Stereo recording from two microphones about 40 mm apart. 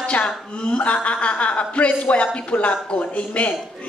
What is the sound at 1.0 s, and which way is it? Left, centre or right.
A woman's voice, left.